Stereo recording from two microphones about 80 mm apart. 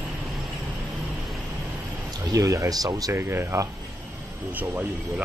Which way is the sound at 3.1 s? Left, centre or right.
Right.